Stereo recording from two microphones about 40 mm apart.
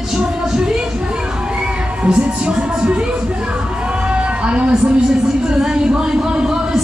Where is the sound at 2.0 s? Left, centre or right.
Right.